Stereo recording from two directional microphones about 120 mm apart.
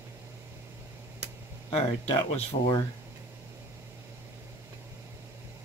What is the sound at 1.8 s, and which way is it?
Speech, 50° left (ahead or behind).